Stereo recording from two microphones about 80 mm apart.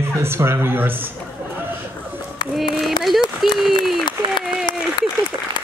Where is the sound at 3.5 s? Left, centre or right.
Centre.